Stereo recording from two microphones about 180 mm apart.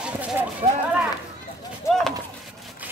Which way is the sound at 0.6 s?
45° right (ahead or behind).